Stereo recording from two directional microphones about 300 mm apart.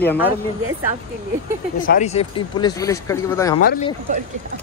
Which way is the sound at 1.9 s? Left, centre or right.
Left.